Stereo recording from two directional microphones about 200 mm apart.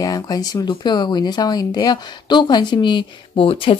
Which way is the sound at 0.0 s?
20° left (ahead or behind).